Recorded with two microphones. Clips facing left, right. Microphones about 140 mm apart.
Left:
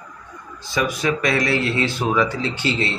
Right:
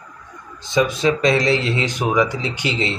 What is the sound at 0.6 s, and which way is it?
Speech, 20° right (ahead or behind).